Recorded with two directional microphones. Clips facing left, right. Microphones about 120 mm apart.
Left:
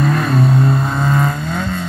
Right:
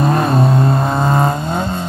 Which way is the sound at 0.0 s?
35° right (ahead or behind).